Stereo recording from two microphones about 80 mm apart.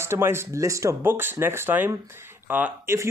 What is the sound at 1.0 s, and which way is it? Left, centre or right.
A man's voice, right.